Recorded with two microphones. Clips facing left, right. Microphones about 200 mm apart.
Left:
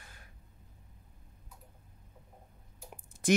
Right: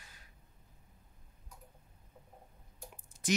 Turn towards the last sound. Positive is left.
turn(degrees=55)  # may be behind; listen again after turning